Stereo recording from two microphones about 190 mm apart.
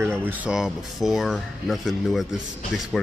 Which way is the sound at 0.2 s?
5° right (ahead or behind).